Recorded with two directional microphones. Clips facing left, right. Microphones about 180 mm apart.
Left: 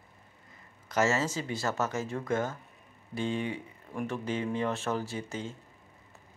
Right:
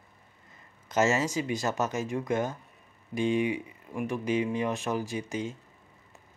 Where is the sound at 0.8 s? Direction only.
20° right (ahead or behind).